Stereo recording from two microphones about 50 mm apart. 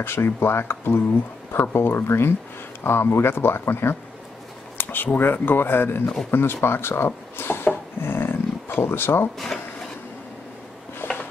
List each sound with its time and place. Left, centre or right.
0.0 s speech: left
4.7 s speech: left
6.3 s rub: left
8.8 s speech: left
9.4 s a sound: centre
11.0 s a sound: left